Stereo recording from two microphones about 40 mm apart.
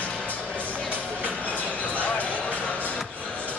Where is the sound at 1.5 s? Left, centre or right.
Left.